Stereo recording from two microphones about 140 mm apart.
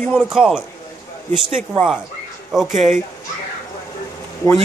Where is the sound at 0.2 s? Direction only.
Centre (ahead or behind).